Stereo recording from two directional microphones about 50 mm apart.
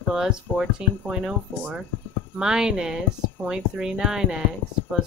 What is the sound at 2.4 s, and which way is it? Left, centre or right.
A woman's voice, centre.